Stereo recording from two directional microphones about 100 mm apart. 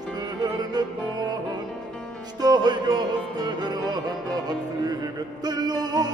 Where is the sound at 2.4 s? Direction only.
45° right (ahead or behind).